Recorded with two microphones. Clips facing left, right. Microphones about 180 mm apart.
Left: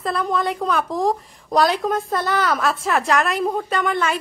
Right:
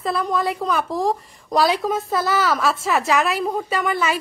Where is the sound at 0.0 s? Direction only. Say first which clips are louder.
Even; centre (ahead or behind).